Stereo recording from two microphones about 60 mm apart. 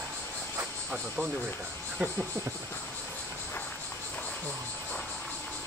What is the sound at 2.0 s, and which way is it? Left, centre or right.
Speech, right.